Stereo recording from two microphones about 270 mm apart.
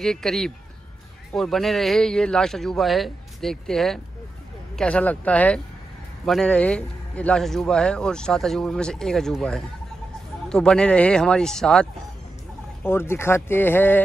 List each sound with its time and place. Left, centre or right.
0.0 s a man's voice: centre